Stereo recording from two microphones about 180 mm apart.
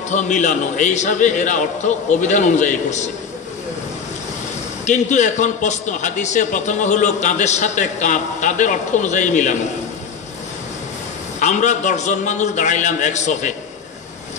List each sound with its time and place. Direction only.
0.1 s a man's voice: 40° left (ahead or behind)
4.8 s a man's voice: 40° left (ahead or behind)
11.3 s a man's voice: 45° left (ahead or behind)